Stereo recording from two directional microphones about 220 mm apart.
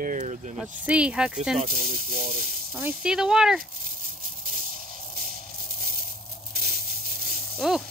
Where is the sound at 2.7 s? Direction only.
5° right (ahead or behind).